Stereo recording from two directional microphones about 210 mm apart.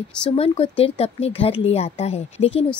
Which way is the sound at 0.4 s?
30° left (ahead or behind).